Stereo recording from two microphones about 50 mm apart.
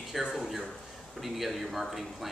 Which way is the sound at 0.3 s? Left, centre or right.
Centre.